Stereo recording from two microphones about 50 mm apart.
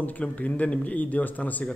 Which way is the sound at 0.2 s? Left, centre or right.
Left.